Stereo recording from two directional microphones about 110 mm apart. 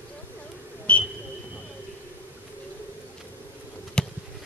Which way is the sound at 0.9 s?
15° left (ahead or behind).